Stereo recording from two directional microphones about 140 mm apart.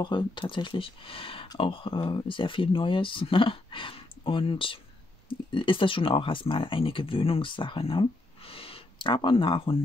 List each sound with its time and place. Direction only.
0.0 s speech: 35° left (ahead or behind)